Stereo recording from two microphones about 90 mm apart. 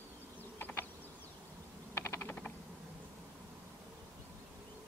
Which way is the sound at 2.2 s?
15° left (ahead or behind).